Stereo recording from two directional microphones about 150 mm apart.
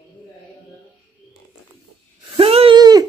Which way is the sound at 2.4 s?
40° right (ahead or behind).